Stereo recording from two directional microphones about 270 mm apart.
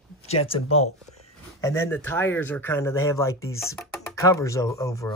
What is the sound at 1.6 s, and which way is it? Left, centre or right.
Speech, centre.